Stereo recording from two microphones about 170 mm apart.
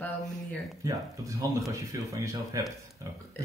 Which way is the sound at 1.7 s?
20° right (ahead or behind).